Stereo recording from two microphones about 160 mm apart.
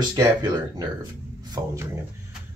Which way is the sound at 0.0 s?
25° right (ahead or behind).